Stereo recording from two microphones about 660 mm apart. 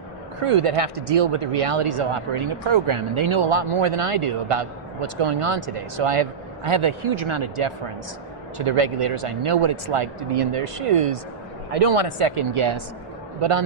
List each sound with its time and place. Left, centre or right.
0.4 s speech: right